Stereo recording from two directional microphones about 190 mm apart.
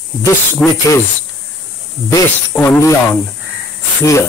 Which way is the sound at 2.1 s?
15° left (ahead or behind).